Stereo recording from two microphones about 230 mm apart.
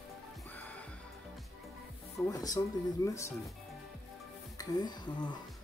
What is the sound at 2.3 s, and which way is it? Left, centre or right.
Music, centre.